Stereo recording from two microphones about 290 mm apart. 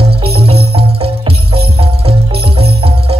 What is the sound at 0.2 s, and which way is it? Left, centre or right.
Music, centre.